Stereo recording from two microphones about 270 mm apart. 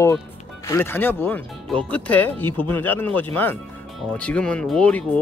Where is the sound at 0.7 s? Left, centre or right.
Centre.